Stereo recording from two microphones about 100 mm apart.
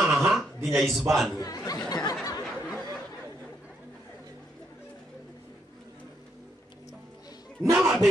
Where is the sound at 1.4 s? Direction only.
40° left (ahead or behind).